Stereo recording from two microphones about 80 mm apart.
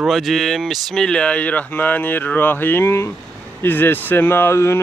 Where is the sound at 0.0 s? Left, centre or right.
Centre.